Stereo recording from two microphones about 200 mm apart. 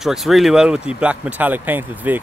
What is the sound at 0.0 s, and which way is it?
Speech, centre (ahead or behind).